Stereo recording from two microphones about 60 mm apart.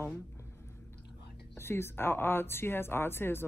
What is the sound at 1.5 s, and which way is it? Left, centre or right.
Speech, left.